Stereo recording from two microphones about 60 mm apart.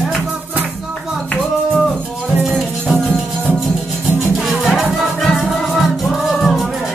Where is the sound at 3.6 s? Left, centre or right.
Centre.